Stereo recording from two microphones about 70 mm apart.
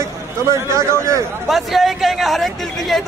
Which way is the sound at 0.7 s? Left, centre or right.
Right.